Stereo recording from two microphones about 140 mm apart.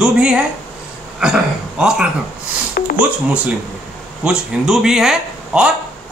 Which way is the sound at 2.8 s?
90° left.